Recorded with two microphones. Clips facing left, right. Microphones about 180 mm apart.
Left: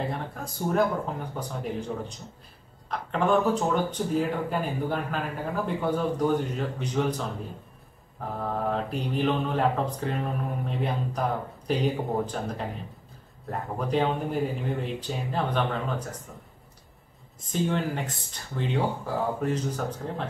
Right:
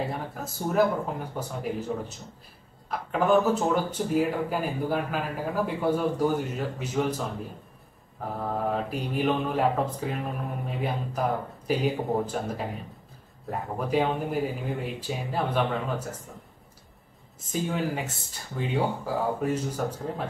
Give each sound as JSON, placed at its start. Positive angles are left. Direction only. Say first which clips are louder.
{"t": 0.1, "sound": "speech", "louder": "even", "side_deg": -5}
{"t": 8.4, "sound": "speech", "louder": "even", "side_deg": -5}
{"t": 17.5, "sound": "speech", "louder": "left 1 dB", "side_deg": -5}